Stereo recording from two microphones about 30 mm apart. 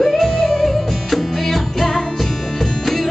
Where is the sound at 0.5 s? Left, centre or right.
Centre.